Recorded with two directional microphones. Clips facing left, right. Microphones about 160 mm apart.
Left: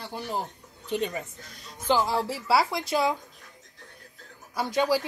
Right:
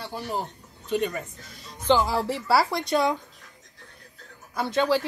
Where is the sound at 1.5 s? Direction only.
Centre (ahead or behind).